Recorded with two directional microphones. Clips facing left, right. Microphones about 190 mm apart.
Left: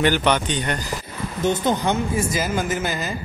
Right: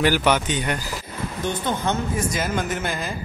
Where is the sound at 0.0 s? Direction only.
5° right (ahead or behind).